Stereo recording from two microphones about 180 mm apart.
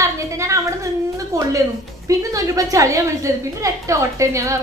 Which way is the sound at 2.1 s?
20° right (ahead or behind).